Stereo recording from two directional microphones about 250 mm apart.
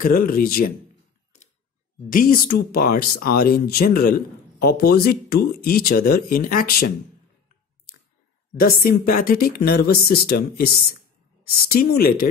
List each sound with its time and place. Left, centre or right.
0.0 s a man's voice: left
2.0 s a man's voice: left
8.5 s a man's voice: left